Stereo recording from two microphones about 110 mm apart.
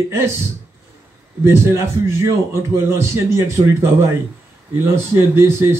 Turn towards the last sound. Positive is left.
turn(degrees=-25)  # may be behind; listen again after turning